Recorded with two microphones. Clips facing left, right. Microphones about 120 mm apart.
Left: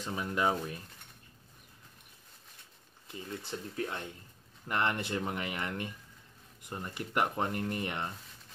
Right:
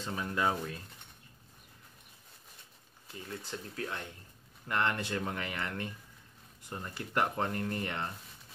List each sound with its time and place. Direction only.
0.0 s speech: 15° left (ahead or behind)
3.1 s speech: 20° left (ahead or behind)